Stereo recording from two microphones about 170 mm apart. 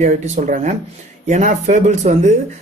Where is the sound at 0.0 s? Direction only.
45° right (ahead or behind).